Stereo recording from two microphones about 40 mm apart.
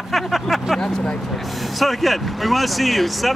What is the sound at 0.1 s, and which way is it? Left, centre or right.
Speech, centre.